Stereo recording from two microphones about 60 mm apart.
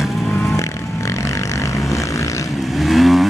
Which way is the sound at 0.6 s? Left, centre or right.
Left.